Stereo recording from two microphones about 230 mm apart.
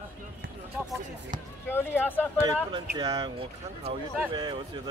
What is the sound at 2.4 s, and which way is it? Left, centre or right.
Speech, centre.